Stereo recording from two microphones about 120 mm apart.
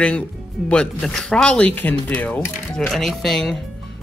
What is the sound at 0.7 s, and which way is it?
Speech, 5° left (ahead or behind).